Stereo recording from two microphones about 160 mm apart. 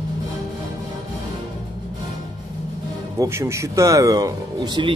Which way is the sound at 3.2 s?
15° right (ahead or behind).